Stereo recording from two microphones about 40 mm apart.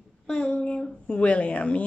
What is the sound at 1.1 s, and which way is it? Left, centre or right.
Speech, left.